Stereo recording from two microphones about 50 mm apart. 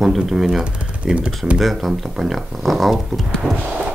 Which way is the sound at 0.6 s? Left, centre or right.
Right.